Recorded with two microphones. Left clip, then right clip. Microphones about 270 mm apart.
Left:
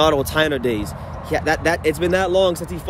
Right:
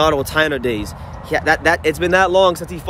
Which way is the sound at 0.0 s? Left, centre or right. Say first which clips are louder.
Right 1 dB; centre.